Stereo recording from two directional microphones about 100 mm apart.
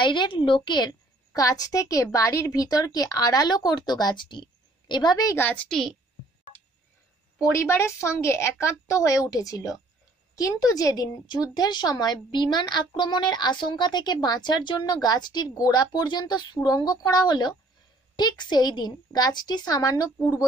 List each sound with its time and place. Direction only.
0.0 s a woman's voice: 50° left (ahead or behind)
1.3 s a woman's voice: 35° left (ahead or behind)
5.3 s a woman's voice: 20° left (ahead or behind)
7.5 s a woman's voice: 25° left (ahead or behind)